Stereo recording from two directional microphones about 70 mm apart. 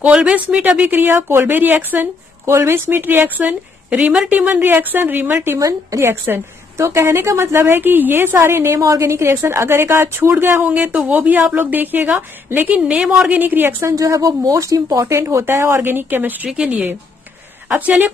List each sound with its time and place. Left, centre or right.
0.0 s speech: centre
5.6 s speech: right
5.9 s a woman's voice: right
8.7 s speech: right
9.0 s a woman's voice: right
10.3 s a woman's voice: right
12.8 s a woman's voice: centre
13.3 s speech: right
13.9 s speech: right
16.5 s a woman's voice: centre